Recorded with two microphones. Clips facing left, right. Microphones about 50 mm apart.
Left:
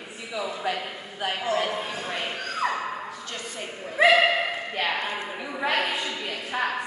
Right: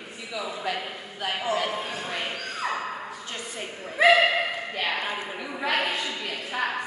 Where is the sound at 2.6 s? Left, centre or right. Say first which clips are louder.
Left 2 dB; left.